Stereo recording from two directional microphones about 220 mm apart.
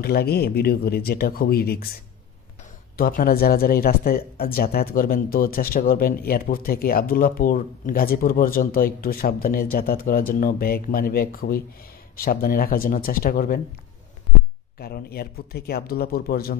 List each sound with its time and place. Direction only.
0.0 s speech: 45° left (ahead or behind)
3.0 s speech: 40° left (ahead or behind)
14.8 s speech: 45° left (ahead or behind)